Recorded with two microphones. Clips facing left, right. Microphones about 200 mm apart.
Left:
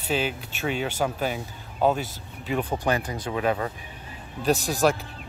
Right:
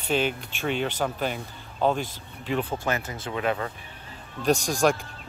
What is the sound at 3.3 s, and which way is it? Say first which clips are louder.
Speech: left 2 dB; 25° left (ahead or behind).